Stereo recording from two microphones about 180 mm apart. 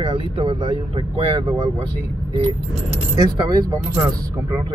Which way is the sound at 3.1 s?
20° right (ahead or behind).